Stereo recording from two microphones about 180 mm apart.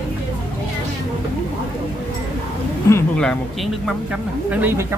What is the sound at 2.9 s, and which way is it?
Speech, 5° left (ahead or behind).